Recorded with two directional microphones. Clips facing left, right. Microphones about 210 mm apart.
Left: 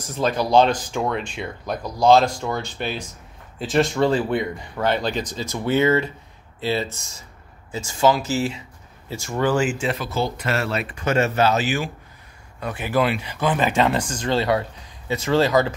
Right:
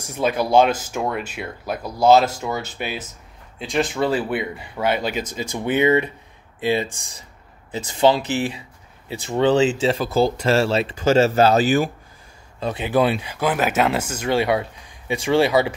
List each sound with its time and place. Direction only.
0.0 s speech: 10° right (ahead or behind)
9.3 s speech: 20° right (ahead or behind); by 11.9 s 35° right (ahead or behind)
12.5 s speech: 20° right (ahead or behind)
13.3 s speech: 10° right (ahead or behind)